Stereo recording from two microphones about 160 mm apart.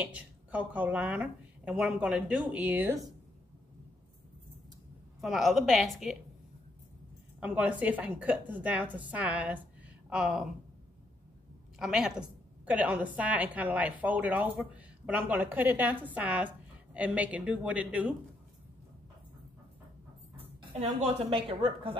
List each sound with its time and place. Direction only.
0.0 s a woman's voice: 10° right (ahead or behind)
5.2 s a woman's voice: centre (ahead or behind)
7.3 s a woman's voice: 10° right (ahead or behind)
11.8 s a woman's voice: 5° right (ahead or behind)
21.0 s speech: 35° right (ahead or behind)